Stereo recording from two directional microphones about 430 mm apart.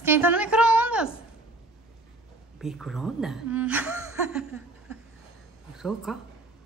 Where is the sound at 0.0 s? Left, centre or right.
Centre.